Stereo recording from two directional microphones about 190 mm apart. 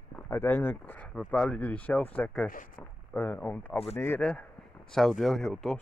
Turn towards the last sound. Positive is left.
turn(degrees=5)  # may be behind; listen again after turning